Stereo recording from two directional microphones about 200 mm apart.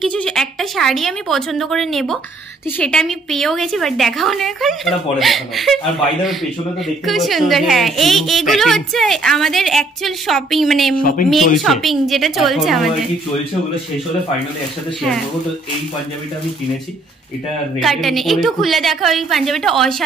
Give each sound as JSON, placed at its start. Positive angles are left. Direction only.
{"t": 0.0, "sound": "a woman's voice", "side_deg": 5}
{"t": 7.1, "sound": "a woman's voice", "side_deg": 0}
{"t": 11.0, "sound": "speech", "side_deg": 45}
{"t": 11.5, "sound": "a woman's voice", "side_deg": 0}
{"t": 17.7, "sound": "a woman's voice", "side_deg": 0}